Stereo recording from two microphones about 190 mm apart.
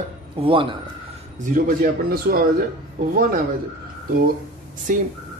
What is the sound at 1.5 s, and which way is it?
Speech, 45° right (ahead or behind).